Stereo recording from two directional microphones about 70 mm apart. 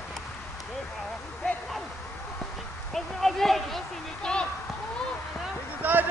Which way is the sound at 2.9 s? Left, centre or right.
Centre.